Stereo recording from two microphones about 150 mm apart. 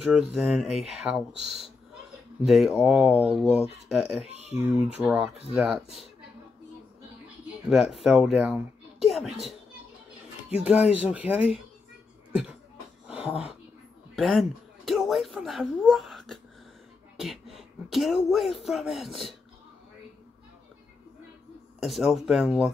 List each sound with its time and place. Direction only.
0.0 s speech: 5° right (ahead or behind)
3.4 s speech: 40° left (ahead or behind)
3.9 s speech: centre (ahead or behind)
4.5 s speech: 45° left (ahead or behind)
4.9 s speech: 10° right (ahead or behind)
7.7 s speech: centre (ahead or behind)
13.0 s a sound: 5° right (ahead or behind)
14.1 s a man's voice: centre (ahead or behind)
21.8 s speech: centre (ahead or behind)